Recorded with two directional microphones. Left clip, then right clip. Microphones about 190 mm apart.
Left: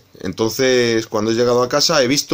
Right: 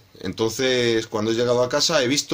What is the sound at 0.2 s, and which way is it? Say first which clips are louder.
Speech: left 5 dB; 35° left (ahead or behind).